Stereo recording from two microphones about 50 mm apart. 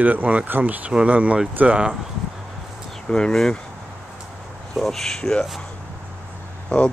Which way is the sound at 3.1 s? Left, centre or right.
Centre.